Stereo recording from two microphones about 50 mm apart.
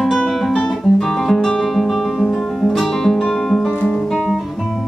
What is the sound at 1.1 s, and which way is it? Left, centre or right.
Guitar, centre.